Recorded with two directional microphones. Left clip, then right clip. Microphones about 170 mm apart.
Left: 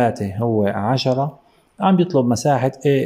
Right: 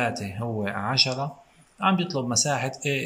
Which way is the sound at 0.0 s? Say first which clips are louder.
Left 9 dB; 40° left (ahead or behind).